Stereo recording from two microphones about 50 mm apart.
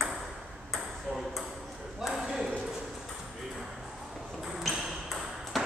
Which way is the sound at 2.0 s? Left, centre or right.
Centre.